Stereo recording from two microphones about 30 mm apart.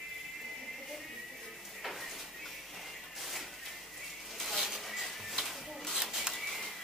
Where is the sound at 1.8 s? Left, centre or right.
Centre.